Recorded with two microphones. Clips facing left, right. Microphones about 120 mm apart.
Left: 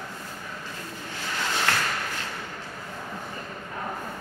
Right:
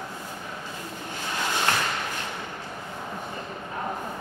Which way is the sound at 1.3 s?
20° right (ahead or behind).